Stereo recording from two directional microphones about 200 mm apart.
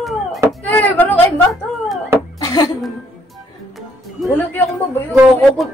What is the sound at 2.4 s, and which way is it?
Cough, 15° left (ahead or behind).